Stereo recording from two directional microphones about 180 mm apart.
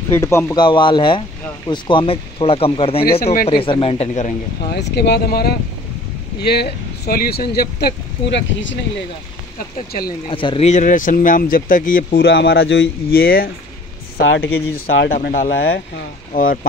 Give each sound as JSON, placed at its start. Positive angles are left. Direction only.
{"t": 0.1, "sound": "speech", "side_deg": 15}
{"t": 0.6, "sound": "speech", "side_deg": 25}
{"t": 3.0, "sound": "speech", "side_deg": 55}
{"t": 3.4, "sound": "speech", "side_deg": 30}
{"t": 4.7, "sound": "speech", "side_deg": 65}
{"t": 10.2, "sound": "speech", "side_deg": 30}
{"t": 14.1, "sound": "speech", "side_deg": 70}
{"t": 14.7, "sound": "speech", "side_deg": 60}